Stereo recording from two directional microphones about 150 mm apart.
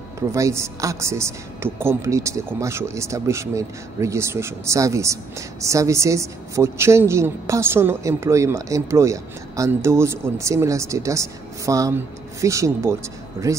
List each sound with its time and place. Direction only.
0.3 s a woman's voice: 20° right (ahead or behind)